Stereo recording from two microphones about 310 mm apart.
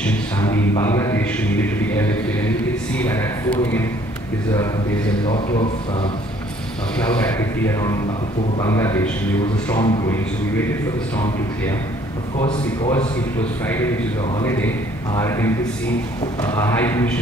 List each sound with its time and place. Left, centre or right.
0.0 s a sound: centre
5.2 s speech: centre
7.1 s speech: centre
12.4 s speech: centre